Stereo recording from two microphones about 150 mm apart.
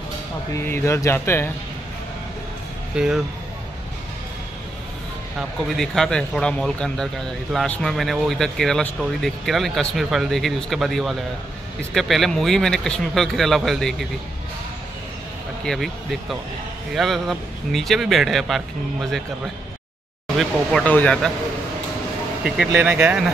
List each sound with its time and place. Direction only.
0.6 s speech: 15° left (ahead or behind)
2.9 s a man's voice: 5° right (ahead or behind)
5.8 s a man's voice: 5° left (ahead or behind)
15.6 s a man's voice: centre (ahead or behind)
22.4 s speech: 5° right (ahead or behind)